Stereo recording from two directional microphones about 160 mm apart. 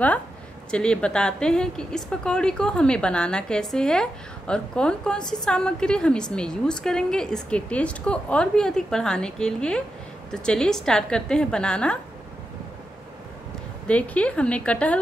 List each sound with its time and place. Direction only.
0.7 s a woman's voice: 5° left (ahead or behind)
13.8 s a woman's voice: 10° left (ahead or behind)